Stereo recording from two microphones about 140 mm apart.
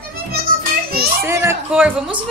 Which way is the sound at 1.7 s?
10° right (ahead or behind).